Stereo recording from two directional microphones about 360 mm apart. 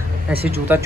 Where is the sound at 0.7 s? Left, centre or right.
Centre.